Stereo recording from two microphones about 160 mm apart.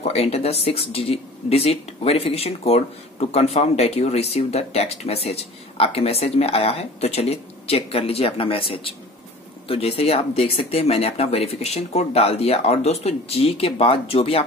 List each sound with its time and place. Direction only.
0.0 s speech: 40° left (ahead or behind)